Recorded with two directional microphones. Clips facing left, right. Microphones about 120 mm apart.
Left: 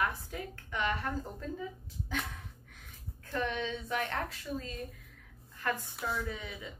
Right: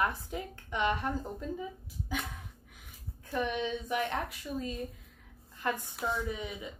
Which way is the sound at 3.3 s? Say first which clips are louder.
Right 2 dB; 15° right (ahead or behind).